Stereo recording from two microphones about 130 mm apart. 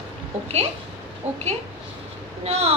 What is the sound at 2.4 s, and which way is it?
Speech, 55° right (ahead or behind).